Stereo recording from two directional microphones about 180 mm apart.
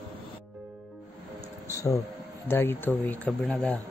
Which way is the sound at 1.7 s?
15° left (ahead or behind).